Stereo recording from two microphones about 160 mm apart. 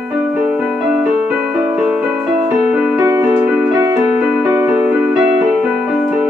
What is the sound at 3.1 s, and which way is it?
Keyboard, 20° right (ahead or behind).